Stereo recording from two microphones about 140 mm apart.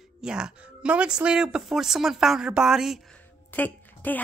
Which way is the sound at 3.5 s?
15° left (ahead or behind).